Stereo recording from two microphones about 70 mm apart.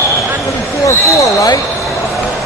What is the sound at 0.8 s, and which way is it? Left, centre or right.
Speech, left.